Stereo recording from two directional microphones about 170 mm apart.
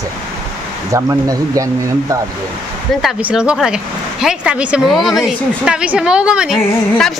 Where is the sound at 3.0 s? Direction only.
5° right (ahead or behind).